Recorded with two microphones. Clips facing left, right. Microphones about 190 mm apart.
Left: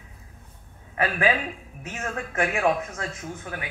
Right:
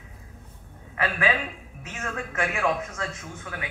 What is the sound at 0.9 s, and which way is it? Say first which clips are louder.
A man's voice: left 2 dB; 35° left (ahead or behind).